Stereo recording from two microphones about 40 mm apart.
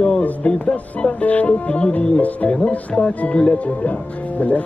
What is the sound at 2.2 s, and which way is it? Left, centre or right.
Speech, left.